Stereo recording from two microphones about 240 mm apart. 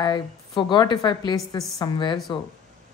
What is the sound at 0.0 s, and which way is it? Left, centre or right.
A woman's voice, centre.